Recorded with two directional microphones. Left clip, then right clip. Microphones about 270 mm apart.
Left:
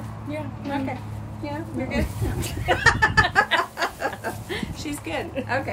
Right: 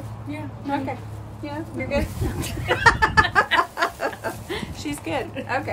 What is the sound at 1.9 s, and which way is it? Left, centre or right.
A woman's voice, centre.